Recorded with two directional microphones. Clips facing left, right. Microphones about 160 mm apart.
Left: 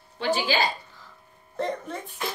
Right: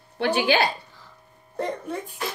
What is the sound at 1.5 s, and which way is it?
Speech, 10° right (ahead or behind).